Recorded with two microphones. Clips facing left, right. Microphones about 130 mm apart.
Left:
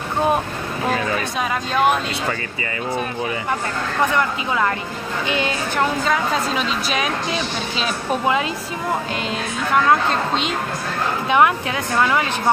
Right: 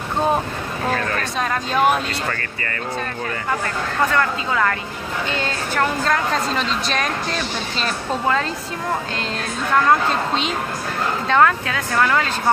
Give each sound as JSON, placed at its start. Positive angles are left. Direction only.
{"t": 0.8, "sound": "speech", "side_deg": 10}
{"t": 4.1, "sound": "speech", "side_deg": 20}
{"t": 6.0, "sound": "speech", "side_deg": 5}
{"t": 9.8, "sound": "speech", "side_deg": 0}
{"t": 11.2, "sound": "speech", "side_deg": 15}